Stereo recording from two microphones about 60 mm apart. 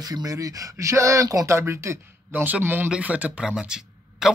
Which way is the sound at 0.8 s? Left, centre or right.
Right.